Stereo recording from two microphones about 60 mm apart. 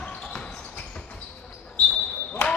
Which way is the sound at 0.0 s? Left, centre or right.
Left.